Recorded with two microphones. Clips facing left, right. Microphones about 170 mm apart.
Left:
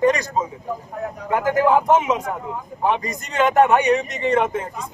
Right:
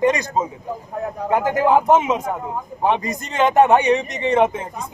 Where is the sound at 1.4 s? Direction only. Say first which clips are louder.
Even; 25° right (ahead or behind).